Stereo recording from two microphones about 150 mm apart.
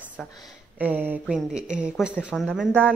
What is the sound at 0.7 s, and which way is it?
A woman's voice, 10° right (ahead or behind).